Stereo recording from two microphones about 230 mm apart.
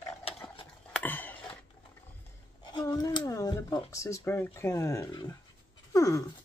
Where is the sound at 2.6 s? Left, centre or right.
Centre.